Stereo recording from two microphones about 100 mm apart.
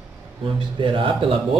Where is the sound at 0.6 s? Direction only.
60° right (ahead or behind).